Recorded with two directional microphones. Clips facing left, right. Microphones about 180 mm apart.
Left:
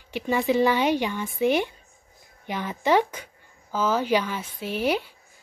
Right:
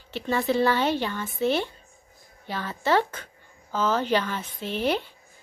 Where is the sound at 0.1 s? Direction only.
15° left (ahead or behind).